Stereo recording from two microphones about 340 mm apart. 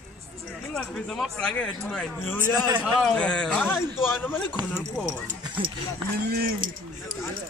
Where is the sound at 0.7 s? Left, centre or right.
Centre.